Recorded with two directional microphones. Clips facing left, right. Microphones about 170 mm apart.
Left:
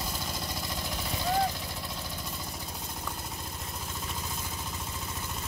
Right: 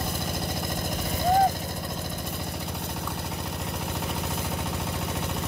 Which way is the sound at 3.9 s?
65° right (ahead or behind).